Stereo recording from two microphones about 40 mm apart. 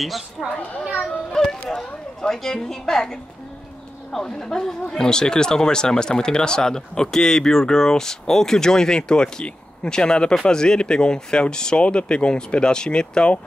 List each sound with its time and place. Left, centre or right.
0.4 s a child's voice: centre
1.3 s speech: centre